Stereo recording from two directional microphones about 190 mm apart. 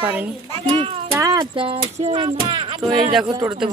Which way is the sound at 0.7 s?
30° right (ahead or behind).